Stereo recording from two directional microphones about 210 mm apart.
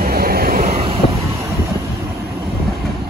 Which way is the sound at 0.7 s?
25° right (ahead or behind).